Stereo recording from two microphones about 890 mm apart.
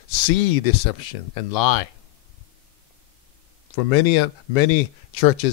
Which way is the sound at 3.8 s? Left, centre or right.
Left.